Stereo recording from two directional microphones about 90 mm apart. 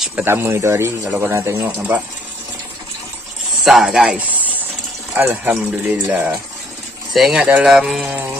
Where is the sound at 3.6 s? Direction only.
5° right (ahead or behind).